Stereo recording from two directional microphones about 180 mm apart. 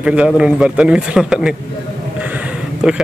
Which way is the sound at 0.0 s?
5° right (ahead or behind).